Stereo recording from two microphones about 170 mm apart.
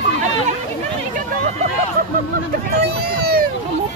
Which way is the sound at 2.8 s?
65° right (ahead or behind).